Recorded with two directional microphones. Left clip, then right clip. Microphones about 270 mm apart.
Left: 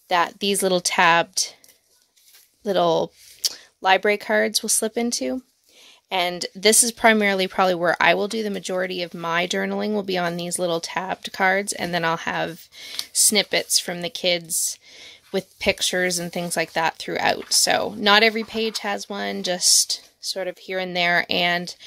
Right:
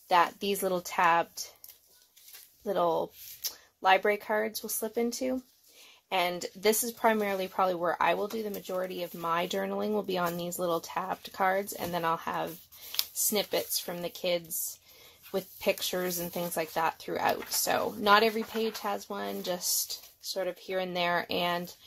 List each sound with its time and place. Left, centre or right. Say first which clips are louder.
0.1 s speech: left 5 dB; left
2.6 s speech: left 9 dB; left